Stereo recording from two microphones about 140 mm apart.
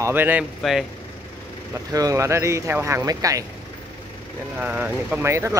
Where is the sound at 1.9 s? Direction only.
25° right (ahead or behind).